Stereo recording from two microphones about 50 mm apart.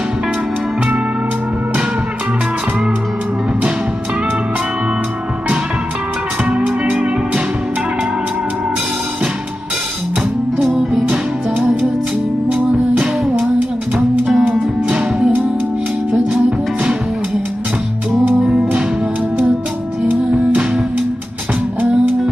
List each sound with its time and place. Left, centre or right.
6.5 s music: centre
10.8 s music: centre
13.9 s music: centre
18.4 s music: centre
20.2 s music: right